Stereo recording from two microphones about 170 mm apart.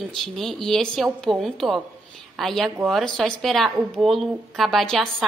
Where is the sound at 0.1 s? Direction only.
Centre (ahead or behind).